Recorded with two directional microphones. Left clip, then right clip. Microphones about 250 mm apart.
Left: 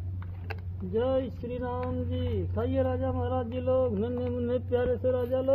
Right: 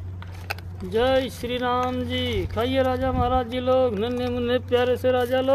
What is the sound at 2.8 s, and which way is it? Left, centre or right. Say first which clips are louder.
Speech: right 7 dB; right.